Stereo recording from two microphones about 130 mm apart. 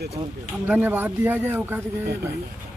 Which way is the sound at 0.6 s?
15° right (ahead or behind).